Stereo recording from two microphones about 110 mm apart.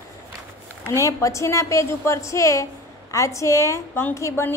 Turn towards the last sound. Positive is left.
turn(degrees=25)  # may be behind; listen again after turning